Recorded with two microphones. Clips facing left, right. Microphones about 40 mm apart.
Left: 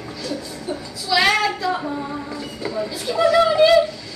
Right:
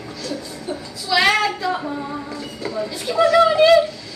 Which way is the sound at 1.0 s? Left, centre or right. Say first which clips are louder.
Right 1 dB; centre.